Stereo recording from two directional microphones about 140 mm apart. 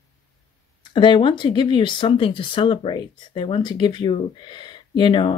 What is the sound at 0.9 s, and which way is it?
Speech, 35° left (ahead or behind).